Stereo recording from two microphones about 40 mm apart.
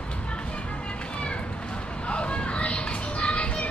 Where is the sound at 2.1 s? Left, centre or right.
Left.